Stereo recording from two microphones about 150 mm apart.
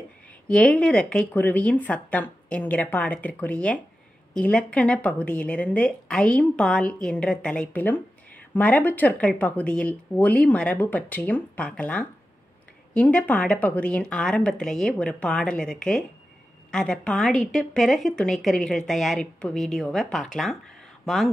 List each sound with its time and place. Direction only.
0.5 s a woman's voice: 5° left (ahead or behind)